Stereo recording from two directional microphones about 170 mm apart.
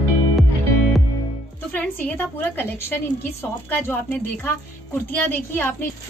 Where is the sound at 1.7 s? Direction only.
10° left (ahead or behind).